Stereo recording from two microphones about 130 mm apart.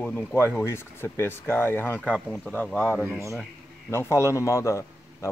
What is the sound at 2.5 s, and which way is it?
Speech, 15° left (ahead or behind).